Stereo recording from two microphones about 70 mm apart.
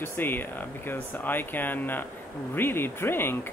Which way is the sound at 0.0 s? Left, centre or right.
Left.